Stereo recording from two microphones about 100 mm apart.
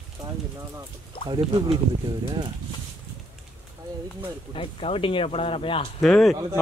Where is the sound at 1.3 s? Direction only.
55° right (ahead or behind).